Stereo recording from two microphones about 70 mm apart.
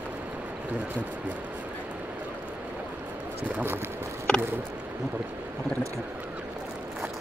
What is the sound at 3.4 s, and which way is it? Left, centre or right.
Speech, right.